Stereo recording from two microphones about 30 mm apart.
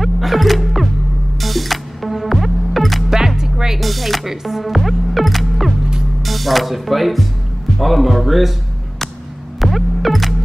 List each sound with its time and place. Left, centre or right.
0.0 s music: centre
3.1 s music: centre
3.8 s music: centre
7.8 s speech: centre
9.6 s music: centre